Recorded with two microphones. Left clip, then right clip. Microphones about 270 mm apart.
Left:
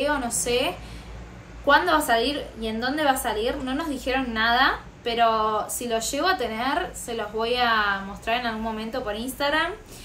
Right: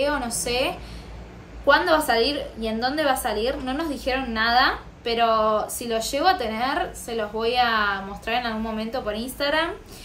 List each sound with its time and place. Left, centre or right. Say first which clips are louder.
0.0 s a woman's voice: right 1 dB; centre